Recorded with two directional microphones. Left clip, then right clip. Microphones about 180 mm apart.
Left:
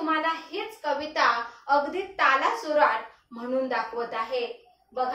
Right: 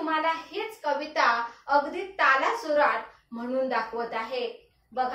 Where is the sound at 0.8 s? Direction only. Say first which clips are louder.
Left 1 dB; 20° left (ahead or behind).